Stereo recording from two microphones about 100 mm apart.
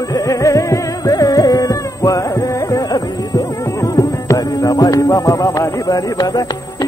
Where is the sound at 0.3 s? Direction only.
35° left (ahead or behind).